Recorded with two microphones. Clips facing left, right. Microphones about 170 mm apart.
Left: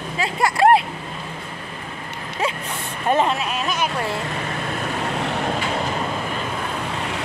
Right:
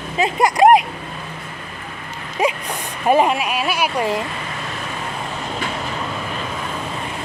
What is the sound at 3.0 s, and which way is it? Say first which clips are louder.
Speech: right 4 dB; 10° right (ahead or behind).